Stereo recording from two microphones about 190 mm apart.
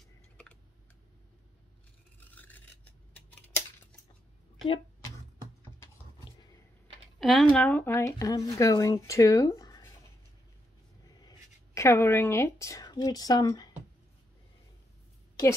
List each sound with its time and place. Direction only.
2.1 s filing: 10° left (ahead or behind)
7.2 s speech: centre (ahead or behind)
11.1 s speech: 20° left (ahead or behind)